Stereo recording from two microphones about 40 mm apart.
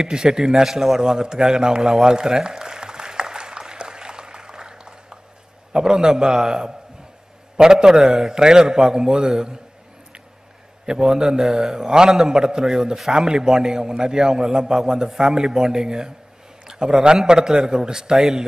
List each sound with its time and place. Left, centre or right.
0.0 s a sound: centre
5.7 s a man's voice: centre
8.4 s a man's voice: centre
10.9 s a man's voice: centre